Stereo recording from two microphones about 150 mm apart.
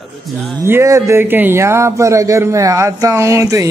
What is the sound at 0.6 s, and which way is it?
Speech, 20° right (ahead or behind).